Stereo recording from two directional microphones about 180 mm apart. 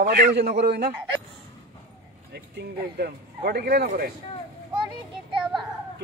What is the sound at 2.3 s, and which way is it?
Speech, 65° right (ahead or behind).